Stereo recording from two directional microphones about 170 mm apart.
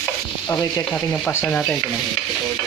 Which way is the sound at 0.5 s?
20° left (ahead or behind).